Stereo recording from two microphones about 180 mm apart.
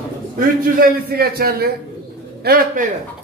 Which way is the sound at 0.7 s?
55° right (ahead or behind).